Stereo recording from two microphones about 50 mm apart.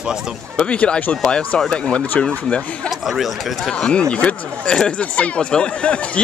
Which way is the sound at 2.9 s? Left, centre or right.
Centre.